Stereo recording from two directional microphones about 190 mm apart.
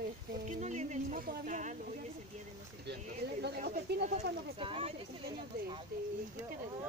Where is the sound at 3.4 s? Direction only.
60° right (ahead or behind).